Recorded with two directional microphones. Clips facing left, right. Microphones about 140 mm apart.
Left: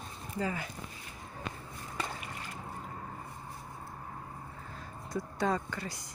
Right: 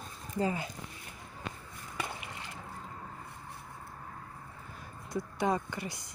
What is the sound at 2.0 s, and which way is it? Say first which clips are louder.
Boat: even; 15° right (ahead or behind).